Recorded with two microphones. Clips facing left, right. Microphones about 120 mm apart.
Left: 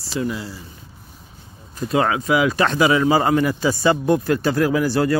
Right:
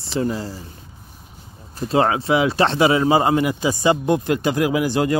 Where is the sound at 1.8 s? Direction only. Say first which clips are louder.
Right 1 dB; 30° right (ahead or behind).